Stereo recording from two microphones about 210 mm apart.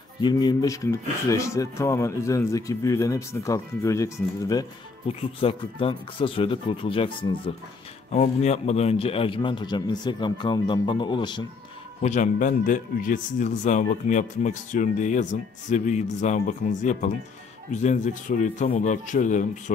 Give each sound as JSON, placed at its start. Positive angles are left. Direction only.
{"t": 0.2, "sound": "a man's voice", "side_deg": 20}
{"t": 12.0, "sound": "speech", "side_deg": 35}